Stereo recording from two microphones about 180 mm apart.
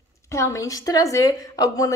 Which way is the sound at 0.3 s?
15° left (ahead or behind).